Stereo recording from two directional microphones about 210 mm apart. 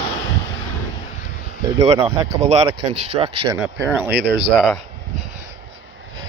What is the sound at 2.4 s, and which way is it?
Speech, 30° right (ahead or behind).